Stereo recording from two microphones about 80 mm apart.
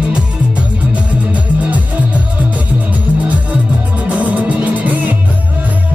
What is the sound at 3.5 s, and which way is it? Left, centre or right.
Music, centre.